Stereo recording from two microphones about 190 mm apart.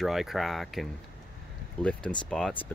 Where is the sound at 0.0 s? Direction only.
Centre (ahead or behind).